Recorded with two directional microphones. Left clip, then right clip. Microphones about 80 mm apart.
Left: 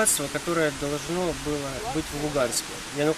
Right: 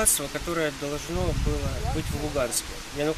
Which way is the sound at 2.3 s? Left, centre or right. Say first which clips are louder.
Left 2 dB; centre.